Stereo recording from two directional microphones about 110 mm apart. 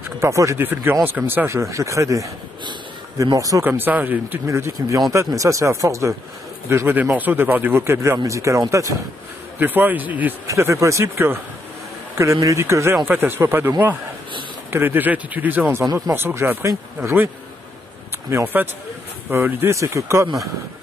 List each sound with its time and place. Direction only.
0.2 s a man's voice: 25° right (ahead or behind)
3.3 s speech: 30° right (ahead or behind)
3.6 s speech: 20° right (ahead or behind)
4.5 s a man's voice: 25° right (ahead or behind)
9.6 s speech: 15° right (ahead or behind)
10.4 s a man's voice: 30° right (ahead or behind)
18.3 s a man's voice: 20° right (ahead or behind)